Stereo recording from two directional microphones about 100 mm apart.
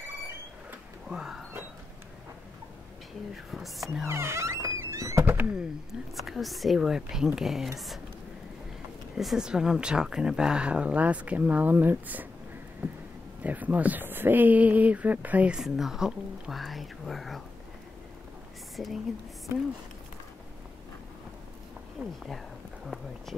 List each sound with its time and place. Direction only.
0.7 s a sound: 5° right (ahead or behind)
3.5 s speech: centre (ahead or behind)
4.1 s speech: 25° right (ahead or behind)
5.5 s speech: 5° right (ahead or behind)
9.1 s speech: 5° right (ahead or behind); by 12.3 s 20° right (ahead or behind)
13.4 s speech: 15° right (ahead or behind); by 17.4 s centre (ahead or behind)
18.8 s speech: centre (ahead or behind)
22.0 s speech: 15° right (ahead or behind)